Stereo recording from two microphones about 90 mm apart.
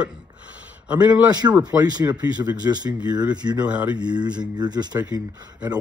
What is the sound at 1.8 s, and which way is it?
Speech, 50° right (ahead or behind).